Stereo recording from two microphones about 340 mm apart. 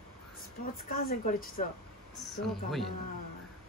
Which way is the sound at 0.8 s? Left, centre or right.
Left.